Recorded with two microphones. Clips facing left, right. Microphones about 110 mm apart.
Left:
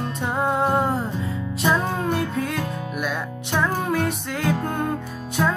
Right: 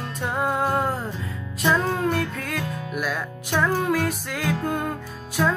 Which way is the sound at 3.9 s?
Centre (ahead or behind).